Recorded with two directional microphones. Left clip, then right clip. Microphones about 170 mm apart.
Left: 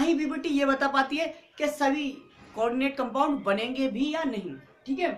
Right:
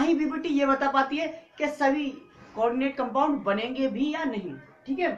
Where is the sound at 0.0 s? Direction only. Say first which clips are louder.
Right 1 dB; 30° left (ahead or behind).